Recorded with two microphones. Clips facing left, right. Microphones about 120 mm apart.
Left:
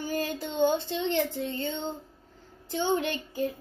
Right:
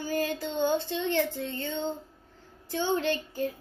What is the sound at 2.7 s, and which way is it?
Child singing, 15° left (ahead or behind).